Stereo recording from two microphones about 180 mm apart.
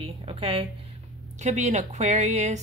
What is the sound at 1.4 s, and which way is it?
A woman's voice, 40° right (ahead or behind).